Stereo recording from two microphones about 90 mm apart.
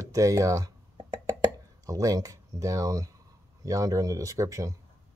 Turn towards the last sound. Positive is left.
turn(degrees=-40)  # may be behind; listen again after turning